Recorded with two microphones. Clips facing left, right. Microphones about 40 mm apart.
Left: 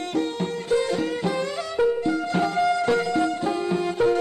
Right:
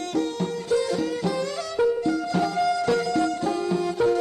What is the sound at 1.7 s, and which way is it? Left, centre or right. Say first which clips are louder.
Music: even; left.